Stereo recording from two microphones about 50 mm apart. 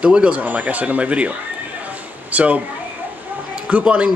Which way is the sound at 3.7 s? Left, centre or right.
Right.